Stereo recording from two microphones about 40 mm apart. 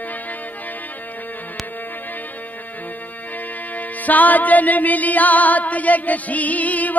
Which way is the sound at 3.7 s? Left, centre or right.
Left.